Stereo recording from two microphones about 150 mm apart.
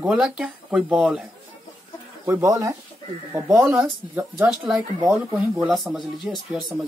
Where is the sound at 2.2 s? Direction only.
15° right (ahead or behind).